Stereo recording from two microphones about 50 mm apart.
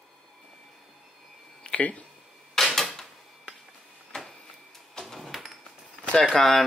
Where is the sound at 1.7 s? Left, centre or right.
Left.